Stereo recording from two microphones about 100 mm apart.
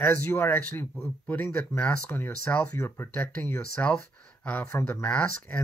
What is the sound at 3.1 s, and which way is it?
Speech, 10° left (ahead or behind).